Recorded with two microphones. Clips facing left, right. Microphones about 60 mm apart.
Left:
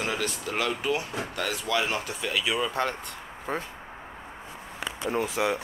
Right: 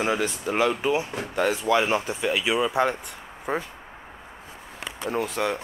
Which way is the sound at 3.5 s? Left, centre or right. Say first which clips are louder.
Right 4 dB; centre.